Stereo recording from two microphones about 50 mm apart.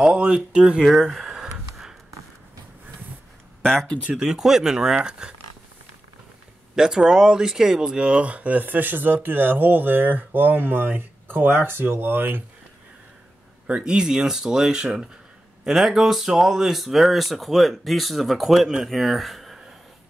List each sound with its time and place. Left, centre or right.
0.0 s speech: centre
0.8 s a sound: centre
3.6 s speech: centre
4.1 s speech: centre
6.7 s speech: centre; by 12.4 s right
13.8 s speech: centre